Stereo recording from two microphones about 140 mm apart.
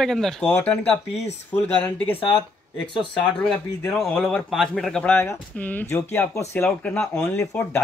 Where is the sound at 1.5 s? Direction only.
15° left (ahead or behind).